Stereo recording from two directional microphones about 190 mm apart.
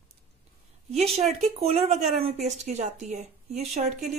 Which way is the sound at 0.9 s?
30° right (ahead or behind).